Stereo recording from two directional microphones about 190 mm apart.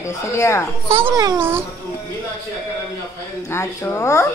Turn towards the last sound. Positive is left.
turn(degrees=15)  # may be behind; listen again after turning